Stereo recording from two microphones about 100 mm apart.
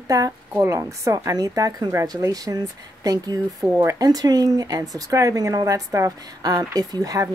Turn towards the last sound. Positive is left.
turn(degrees=-35)  # may be behind; listen again after turning